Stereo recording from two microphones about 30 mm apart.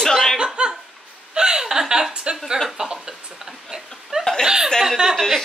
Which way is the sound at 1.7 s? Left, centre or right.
Centre.